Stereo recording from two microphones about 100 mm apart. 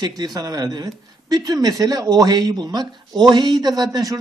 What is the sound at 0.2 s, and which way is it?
A man's voice, 40° right (ahead or behind).